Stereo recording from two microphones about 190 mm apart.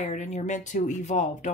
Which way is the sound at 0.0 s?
40° left (ahead or behind).